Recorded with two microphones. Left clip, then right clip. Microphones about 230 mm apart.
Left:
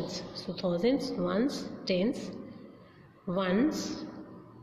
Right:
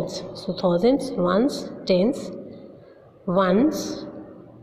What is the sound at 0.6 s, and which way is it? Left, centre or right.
A woman's voice, centre.